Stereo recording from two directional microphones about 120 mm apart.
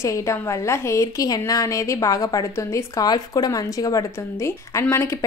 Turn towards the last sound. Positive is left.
turn(degrees=20)  # may be behind; listen again after turning